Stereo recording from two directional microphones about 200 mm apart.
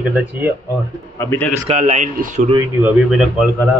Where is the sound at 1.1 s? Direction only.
10° left (ahead or behind).